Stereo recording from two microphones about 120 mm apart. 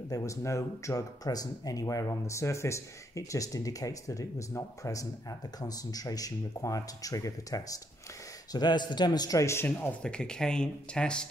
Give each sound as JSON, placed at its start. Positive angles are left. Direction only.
{"t": 0.1, "sound": "a man's voice", "side_deg": 25}